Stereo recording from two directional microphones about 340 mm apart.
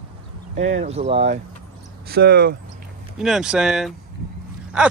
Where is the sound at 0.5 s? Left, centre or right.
Centre.